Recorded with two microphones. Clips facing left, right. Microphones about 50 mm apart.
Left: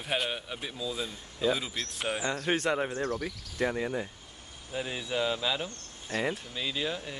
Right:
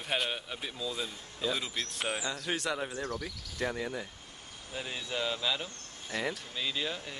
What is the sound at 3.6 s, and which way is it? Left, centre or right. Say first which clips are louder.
Speech: left 4 dB; centre.